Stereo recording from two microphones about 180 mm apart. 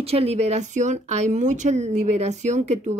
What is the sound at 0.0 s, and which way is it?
Speech, 35° right (ahead or behind).